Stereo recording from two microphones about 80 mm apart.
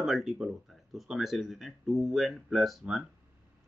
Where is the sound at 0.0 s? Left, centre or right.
Centre.